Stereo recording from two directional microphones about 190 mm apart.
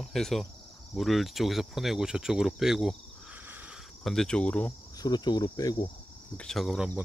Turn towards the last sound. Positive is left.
turn(degrees=-5)  # may be behind; listen again after turning